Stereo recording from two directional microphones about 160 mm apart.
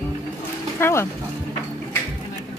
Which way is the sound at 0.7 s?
15° left (ahead or behind).